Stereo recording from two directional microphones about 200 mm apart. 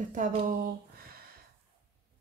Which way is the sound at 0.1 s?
40° right (ahead or behind).